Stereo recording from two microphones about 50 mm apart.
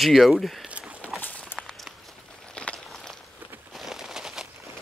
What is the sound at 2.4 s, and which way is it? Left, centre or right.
Walk, left.